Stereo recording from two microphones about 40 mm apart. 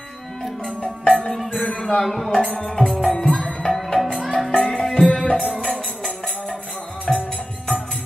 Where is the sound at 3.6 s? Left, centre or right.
Centre.